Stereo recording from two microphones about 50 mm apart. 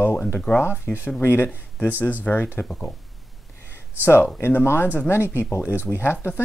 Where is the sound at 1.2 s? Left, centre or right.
Left.